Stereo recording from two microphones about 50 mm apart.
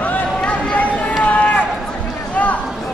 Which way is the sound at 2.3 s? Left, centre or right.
Left.